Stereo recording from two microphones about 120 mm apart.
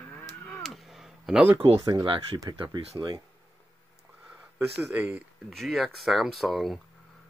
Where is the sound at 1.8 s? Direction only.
30° right (ahead or behind).